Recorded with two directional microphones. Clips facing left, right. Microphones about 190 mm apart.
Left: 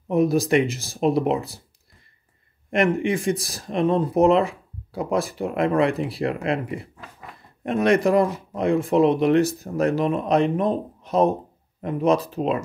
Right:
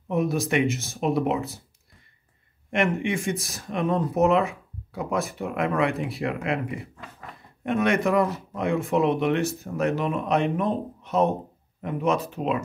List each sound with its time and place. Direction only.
0.1 s speech: 35° left (ahead or behind)
2.7 s speech: 35° left (ahead or behind)